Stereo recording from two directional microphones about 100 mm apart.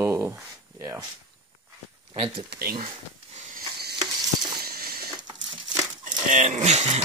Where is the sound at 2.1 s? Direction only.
70° right (ahead or behind).